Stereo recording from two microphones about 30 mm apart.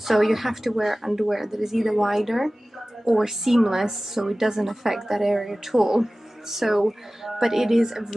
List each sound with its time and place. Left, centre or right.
0.0 s speech: centre